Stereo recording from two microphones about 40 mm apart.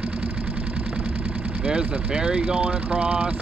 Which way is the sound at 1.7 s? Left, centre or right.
Centre.